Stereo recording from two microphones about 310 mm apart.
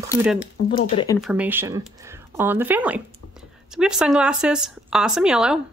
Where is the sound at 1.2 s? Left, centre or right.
Centre.